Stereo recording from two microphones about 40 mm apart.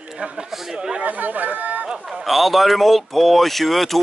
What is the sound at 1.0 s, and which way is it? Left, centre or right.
Speech, right.